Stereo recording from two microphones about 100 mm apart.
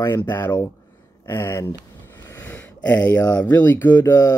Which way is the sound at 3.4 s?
20° left (ahead or behind).